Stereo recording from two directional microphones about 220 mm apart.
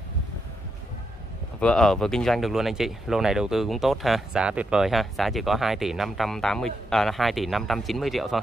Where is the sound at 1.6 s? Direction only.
5° left (ahead or behind).